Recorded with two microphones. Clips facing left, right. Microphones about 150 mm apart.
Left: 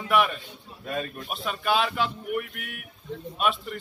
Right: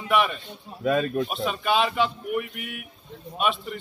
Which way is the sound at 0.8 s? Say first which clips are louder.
Right 10 dB; 90° right.